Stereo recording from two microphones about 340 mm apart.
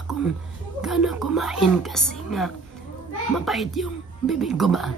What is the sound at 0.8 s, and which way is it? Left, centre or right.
Speech, centre.